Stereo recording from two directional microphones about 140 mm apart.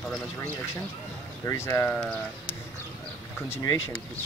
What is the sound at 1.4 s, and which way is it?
Speech, 20° left (ahead or behind).